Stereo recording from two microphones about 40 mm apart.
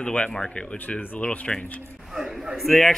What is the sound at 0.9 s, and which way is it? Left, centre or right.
Speech, left.